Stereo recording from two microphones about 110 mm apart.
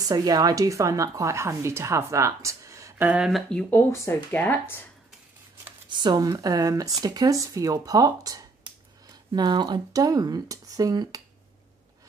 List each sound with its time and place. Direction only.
0.1 s a woman's voice: 35° right (ahead or behind)
3.0 s speech: 10° right (ahead or behind)
3.3 s speech: 5° left (ahead or behind)
3.9 s speech: 25° left (ahead or behind)
5.9 s speech: 45° right (ahead or behind)
6.2 s speech: 30° right (ahead or behind)